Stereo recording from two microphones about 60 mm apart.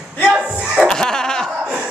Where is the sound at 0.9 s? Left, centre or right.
Centre.